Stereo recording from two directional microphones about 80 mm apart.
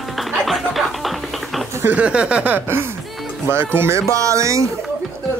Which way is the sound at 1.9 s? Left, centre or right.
Centre.